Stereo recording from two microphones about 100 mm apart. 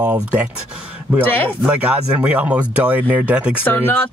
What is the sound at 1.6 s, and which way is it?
Speech, 10° right (ahead or behind).